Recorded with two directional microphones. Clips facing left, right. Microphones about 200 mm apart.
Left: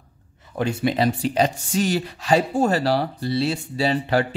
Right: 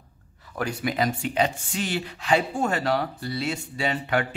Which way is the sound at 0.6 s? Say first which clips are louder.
Left 5 dB; 25° left (ahead or behind).